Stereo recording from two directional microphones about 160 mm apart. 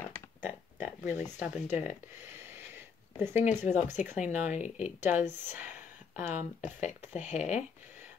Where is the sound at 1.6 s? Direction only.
10° right (ahead or behind).